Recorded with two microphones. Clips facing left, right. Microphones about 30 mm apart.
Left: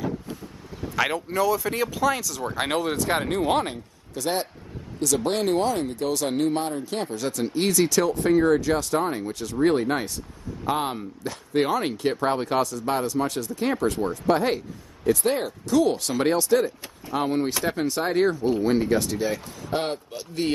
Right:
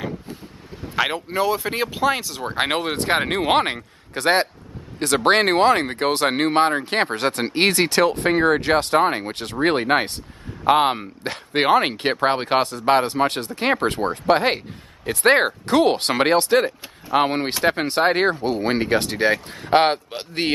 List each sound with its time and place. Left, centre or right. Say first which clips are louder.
0.8 s speech: right 2 dB; right